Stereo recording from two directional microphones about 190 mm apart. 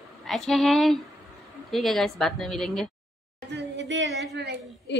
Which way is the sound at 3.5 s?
70° right (ahead or behind).